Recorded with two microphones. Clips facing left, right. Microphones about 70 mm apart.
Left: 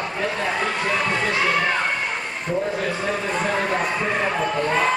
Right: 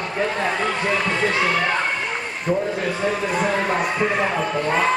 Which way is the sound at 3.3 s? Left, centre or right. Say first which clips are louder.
Even; centre.